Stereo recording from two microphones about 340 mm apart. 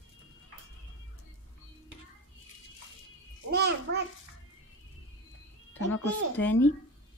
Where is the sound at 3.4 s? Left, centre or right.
Right.